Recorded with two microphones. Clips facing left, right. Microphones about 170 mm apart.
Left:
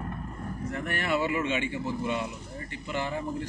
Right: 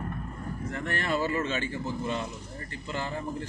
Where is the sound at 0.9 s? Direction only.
10° left (ahead or behind).